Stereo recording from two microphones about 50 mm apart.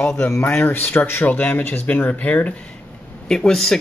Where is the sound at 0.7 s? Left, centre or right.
Left.